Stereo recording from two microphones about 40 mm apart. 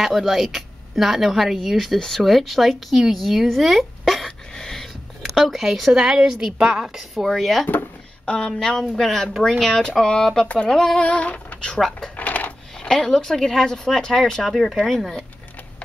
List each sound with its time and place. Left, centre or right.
0.0 s speech: centre
4.6 s a sound: centre
5.3 s a woman's voice: centre
7.2 s speech: centre
8.3 s speech: left
8.5 s speech: centre
8.9 s speech: centre
9.5 s speech: centre
11.0 s a sound: left
12.7 s speech: centre
14.5 s speech: centre